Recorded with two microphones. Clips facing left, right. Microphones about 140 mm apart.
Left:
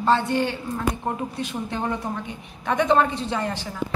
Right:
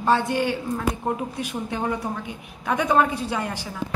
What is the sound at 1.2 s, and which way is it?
A woman's voice, 10° right (ahead or behind).